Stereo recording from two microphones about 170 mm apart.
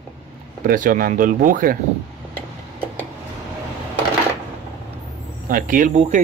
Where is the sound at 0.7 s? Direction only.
55° right (ahead or behind).